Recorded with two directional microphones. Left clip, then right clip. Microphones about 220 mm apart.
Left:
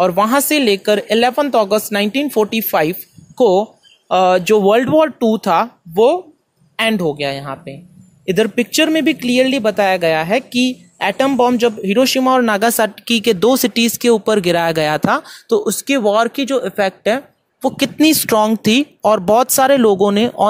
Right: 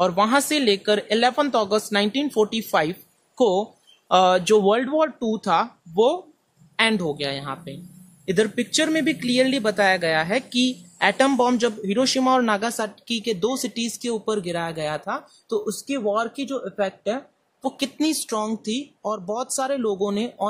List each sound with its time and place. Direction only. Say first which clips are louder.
0.0 s speech: left 6 dB; 20° left (ahead or behind)